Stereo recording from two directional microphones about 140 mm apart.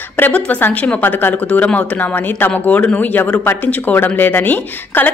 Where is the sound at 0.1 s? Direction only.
15° left (ahead or behind).